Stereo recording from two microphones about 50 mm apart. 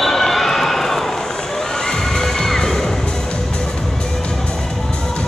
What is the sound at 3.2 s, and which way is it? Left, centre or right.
Music, centre.